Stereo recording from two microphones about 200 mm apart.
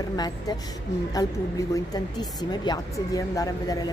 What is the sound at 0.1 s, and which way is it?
Speech, 20° left (ahead or behind).